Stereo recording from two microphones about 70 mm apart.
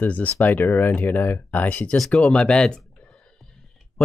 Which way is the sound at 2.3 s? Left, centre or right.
Centre.